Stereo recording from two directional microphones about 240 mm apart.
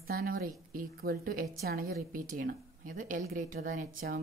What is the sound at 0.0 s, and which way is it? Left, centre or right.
A woman's voice, right.